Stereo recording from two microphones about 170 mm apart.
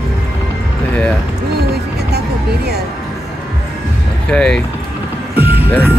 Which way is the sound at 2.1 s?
70° right (ahead or behind).